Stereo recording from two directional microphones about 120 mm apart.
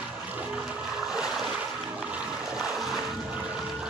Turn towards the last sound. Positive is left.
turn(degrees=0)  # may be behind; listen again after turning